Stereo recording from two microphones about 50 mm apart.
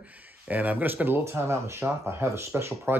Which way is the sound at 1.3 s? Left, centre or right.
Right.